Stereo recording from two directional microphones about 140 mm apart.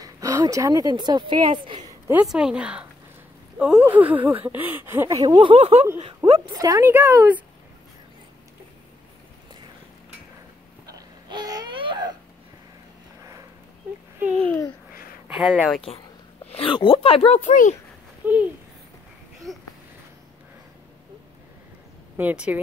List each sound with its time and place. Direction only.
0.0 s speech: 25° right (ahead or behind)
1.9 s a sound: 15° right (ahead or behind)
2.2 s speech: 5° right (ahead or behind); by 6.5 s 45° right (ahead or behind)
6.5 s speech: 25° right (ahead or behind)
10.9 s babbling: 30° right (ahead or behind)
15.2 s speech: 5° right (ahead or behind)
16.4 s speech: 40° left (ahead or behind)
17.4 s speech: 60° left (ahead or behind)
18.2 s speech: 15° right (ahead or behind)
19.5 s speech: centre (ahead or behind)
22.1 s speech: 10° right (ahead or behind)